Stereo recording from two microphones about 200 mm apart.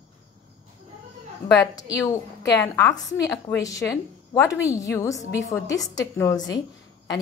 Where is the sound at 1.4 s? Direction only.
15° left (ahead or behind).